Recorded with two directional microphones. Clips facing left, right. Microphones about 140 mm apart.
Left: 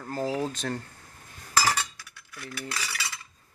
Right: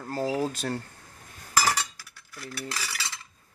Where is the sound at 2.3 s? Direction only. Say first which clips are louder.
Even; 30° right (ahead or behind).